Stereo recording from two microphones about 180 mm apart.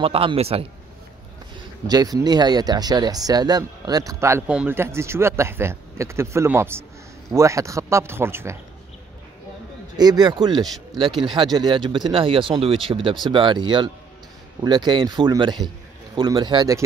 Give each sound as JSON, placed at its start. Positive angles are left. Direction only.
{"t": 0.0, "sound": "a man's voice", "side_deg": -30}
{"t": 1.9, "sound": "speech", "side_deg": -20}
{"t": 9.9, "sound": "speech", "side_deg": -20}